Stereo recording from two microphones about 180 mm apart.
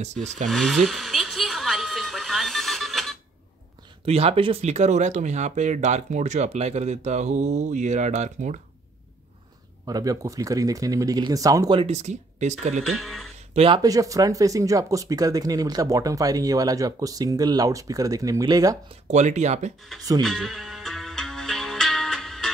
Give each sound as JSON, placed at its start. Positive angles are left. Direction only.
{"t": 0.0, "sound": "speech", "side_deg": -40}
{"t": 0.5, "sound": "speech", "side_deg": 0}
{"t": 0.8, "sound": "a sound", "side_deg": 0}
{"t": 4.0, "sound": "speech", "side_deg": -35}
{"t": 9.8, "sound": "speech", "side_deg": -20}
{"t": 12.8, "sound": "speech", "side_deg": 0}
{"t": 13.5, "sound": "speech", "side_deg": -35}
{"t": 13.8, "sound": "speech", "side_deg": -20}
{"t": 19.0, "sound": "speech", "side_deg": -40}
{"t": 20.2, "sound": "music", "side_deg": 0}